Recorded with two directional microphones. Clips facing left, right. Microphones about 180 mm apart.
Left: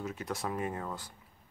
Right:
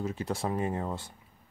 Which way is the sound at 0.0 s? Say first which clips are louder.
Right 4 dB; 30° right (ahead or behind).